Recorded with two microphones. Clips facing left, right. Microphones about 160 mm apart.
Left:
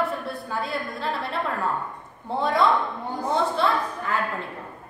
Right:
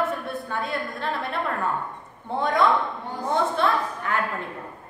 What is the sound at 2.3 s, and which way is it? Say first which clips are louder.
Speech: even; centre (ahead or behind).